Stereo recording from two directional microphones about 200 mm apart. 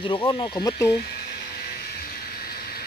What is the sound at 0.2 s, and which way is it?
Speech, 20° left (ahead or behind).